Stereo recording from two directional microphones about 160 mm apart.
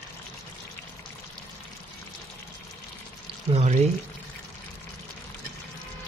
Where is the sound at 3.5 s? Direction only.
45° right (ahead or behind).